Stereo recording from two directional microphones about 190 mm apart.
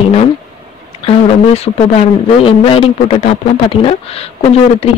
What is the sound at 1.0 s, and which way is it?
Speech, 30° left (ahead or behind).